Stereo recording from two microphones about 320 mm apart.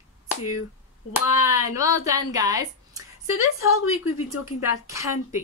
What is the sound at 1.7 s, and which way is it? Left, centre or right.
A woman's voice, centre.